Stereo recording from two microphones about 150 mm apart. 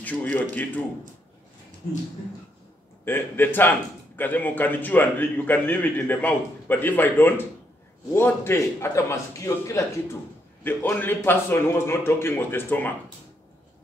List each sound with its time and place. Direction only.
0.0 s a man's voice: 10° left (ahead or behind)
3.1 s a man's voice: 15° left (ahead or behind)